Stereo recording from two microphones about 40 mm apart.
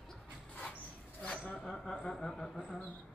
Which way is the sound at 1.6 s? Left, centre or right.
Centre.